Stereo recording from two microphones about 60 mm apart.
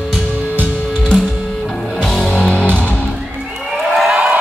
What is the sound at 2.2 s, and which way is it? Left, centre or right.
Music, centre.